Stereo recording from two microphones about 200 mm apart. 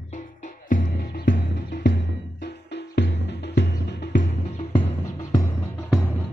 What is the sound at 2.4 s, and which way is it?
Music, 60° left (ahead or behind).